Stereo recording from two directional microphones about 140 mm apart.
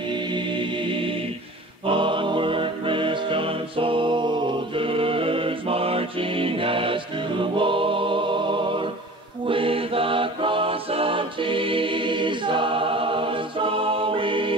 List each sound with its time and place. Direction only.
0.1 s music: 35° right (ahead or behind)